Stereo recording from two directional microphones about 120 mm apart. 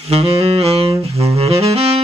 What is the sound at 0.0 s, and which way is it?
Saxophone, 60° right (ahead or behind).